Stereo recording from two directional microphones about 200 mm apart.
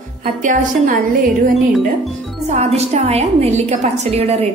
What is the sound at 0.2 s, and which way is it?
Speech, 40° right (ahead or behind).